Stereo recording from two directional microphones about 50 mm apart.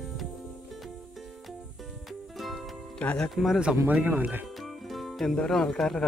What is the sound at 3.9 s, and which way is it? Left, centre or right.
Speech, right.